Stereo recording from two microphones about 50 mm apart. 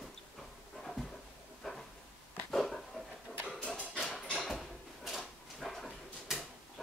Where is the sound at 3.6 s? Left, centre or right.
Left.